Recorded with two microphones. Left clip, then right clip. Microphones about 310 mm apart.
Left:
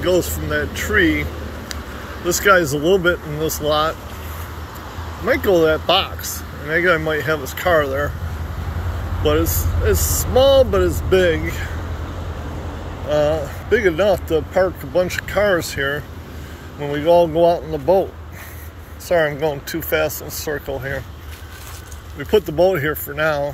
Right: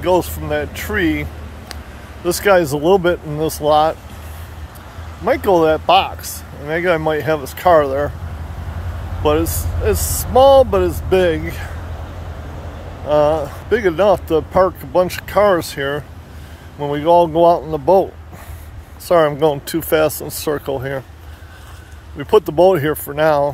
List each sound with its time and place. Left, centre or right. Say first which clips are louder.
0.0 s speech: right 2 dB; centre
2.2 s speech: right 1 dB; centre
5.2 s speech: right 2 dB; centre
9.2 s speech: right 2 dB; centre
13.1 s speech: right 4 dB; centre
19.0 s speech: right 4 dB; centre
22.2 s speech: right 4 dB; centre